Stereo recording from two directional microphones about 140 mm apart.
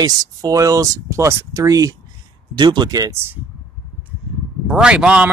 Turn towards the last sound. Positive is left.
turn(degrees=-10)  # may be behind; listen again after turning